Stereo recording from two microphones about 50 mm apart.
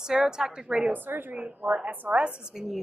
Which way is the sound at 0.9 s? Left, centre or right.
Right.